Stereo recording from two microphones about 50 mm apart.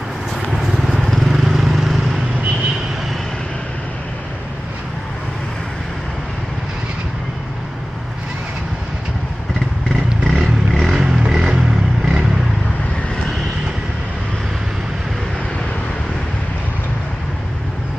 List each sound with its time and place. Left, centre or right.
0.7 s vehicle: centre
10.2 s vehicle: centre
11.0 s vehicle: centre